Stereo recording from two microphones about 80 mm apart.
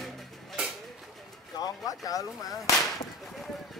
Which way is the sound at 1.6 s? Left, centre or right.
Left.